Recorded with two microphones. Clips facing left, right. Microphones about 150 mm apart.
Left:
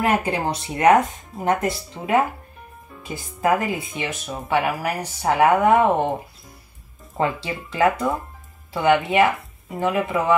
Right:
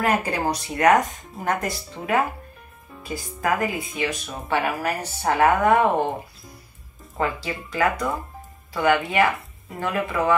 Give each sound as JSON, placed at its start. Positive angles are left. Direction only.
{"t": 0.0, "sound": "speech", "side_deg": 20}
{"t": 7.2, "sound": "speech", "side_deg": 25}